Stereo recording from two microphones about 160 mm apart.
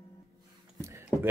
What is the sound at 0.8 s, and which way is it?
Speech, 15° right (ahead or behind).